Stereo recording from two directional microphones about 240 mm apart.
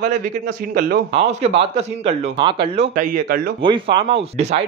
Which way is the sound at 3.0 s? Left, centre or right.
Right.